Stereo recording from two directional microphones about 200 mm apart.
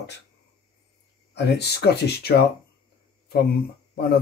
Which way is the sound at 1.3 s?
55° left (ahead or behind).